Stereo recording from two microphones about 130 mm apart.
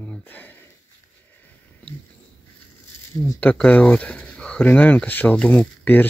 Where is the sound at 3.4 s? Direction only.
10° left (ahead or behind).